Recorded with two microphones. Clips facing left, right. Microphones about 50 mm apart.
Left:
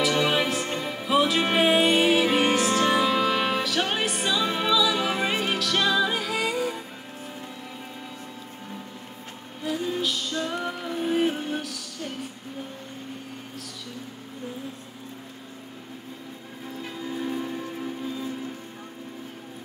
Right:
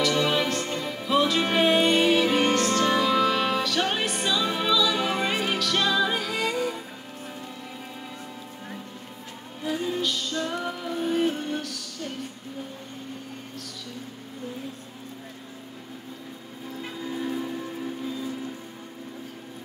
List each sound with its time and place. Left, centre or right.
0.0 s music: centre
9.8 s music: centre
10.3 s music: centre
10.6 s music: centre
17.1 s music: centre